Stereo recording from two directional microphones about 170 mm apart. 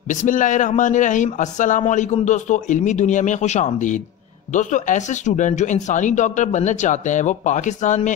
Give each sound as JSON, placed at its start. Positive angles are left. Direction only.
{"t": 0.1, "sound": "speech", "side_deg": 50}